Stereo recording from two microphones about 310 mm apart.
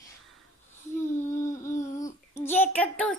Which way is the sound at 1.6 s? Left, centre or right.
Left.